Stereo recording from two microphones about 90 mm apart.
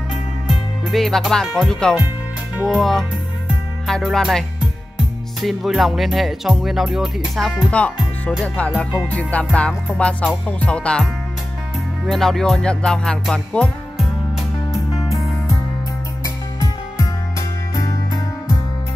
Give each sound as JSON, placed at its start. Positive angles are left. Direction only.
{"t": 0.1, "sound": "music", "side_deg": 0}
{"t": 2.7, "sound": "speech", "side_deg": 5}
{"t": 7.7, "sound": "speech", "side_deg": 15}
{"t": 8.5, "sound": "music", "side_deg": 15}
{"t": 12.1, "sound": "speech", "side_deg": 5}
{"t": 14.7, "sound": "music", "side_deg": 0}
{"t": 16.5, "sound": "music", "side_deg": 40}